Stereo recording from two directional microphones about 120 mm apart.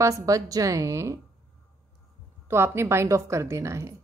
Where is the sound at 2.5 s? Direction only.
20° right (ahead or behind).